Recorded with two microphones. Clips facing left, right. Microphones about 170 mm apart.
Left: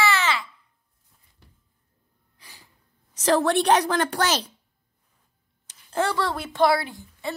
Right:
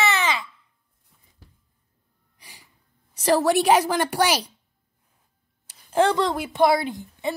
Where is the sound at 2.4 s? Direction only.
15° right (ahead or behind).